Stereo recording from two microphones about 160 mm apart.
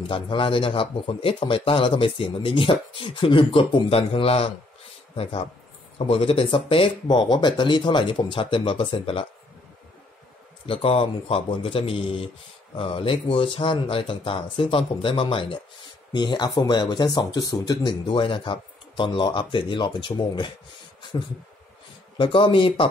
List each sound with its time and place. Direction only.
0.0 s a man's voice: 35° left (ahead or behind)
10.7 s a man's voice: 35° left (ahead or behind)
22.1 s a man's voice: 30° left (ahead or behind)